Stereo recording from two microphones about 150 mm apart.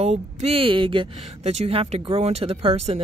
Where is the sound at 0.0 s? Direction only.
45° right (ahead or behind).